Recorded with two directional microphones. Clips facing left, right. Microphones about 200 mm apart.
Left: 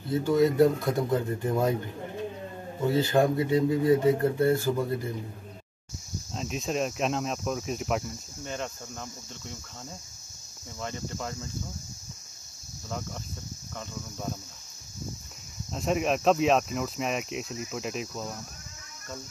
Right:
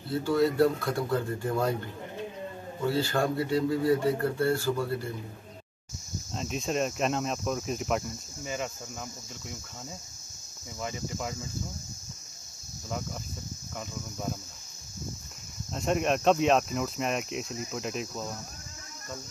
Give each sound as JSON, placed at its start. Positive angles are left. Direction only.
{"t": 0.1, "sound": "speech", "side_deg": 20}
{"t": 2.8, "sound": "speech", "side_deg": 20}
{"t": 6.3, "sound": "speech", "side_deg": 0}
{"t": 15.7, "sound": "speech", "side_deg": 0}